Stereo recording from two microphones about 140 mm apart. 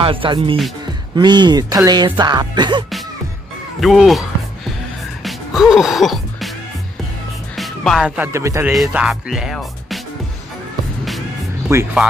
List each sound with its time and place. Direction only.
0.0 s speech: 40° right (ahead or behind)
3.8 s speech: centre (ahead or behind)
5.2 s music: centre (ahead or behind)
7.5 s music: centre (ahead or behind)
8.2 s music: 20° right (ahead or behind)
8.7 s speech: 5° right (ahead or behind)
11.7 s music: 20° right (ahead or behind)